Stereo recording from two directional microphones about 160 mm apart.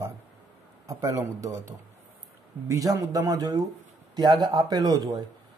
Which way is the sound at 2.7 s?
20° right (ahead or behind).